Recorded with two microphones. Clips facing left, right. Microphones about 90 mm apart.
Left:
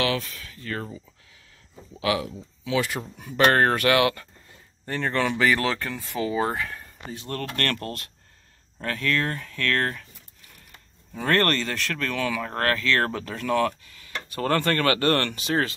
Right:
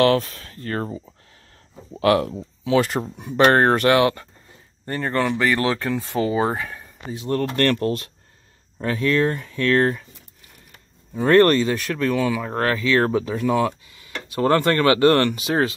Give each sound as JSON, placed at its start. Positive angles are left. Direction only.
{"t": 0.0, "sound": "speech", "side_deg": -40}
{"t": 2.0, "sound": "speech", "side_deg": -50}
{"t": 3.0, "sound": "speech", "side_deg": -20}
{"t": 4.8, "sound": "speech", "side_deg": -10}
{"t": 5.9, "sound": "speech", "side_deg": -20}
{"t": 11.1, "sound": "speech", "side_deg": -15}